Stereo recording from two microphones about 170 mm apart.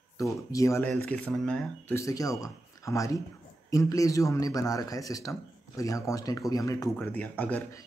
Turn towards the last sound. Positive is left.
turn(degrees=10)  # may be behind; listen again after turning